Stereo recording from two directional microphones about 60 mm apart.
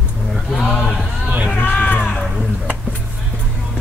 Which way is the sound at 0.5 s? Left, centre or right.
Centre.